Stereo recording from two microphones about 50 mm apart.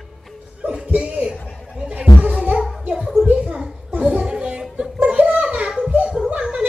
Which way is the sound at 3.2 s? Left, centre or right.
Right.